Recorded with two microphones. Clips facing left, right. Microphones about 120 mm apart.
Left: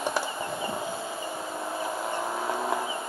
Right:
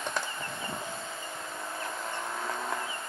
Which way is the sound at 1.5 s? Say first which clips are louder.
Left 6 dB; 25° left (ahead or behind).